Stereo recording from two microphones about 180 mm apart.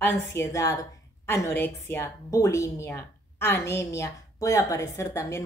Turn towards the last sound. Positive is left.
turn(degrees=15)  # may be behind; listen again after turning